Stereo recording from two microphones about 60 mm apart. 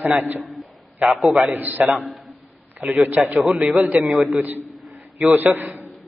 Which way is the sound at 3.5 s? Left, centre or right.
Centre.